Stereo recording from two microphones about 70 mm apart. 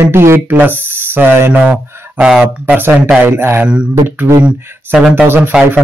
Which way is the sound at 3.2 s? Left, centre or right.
Right.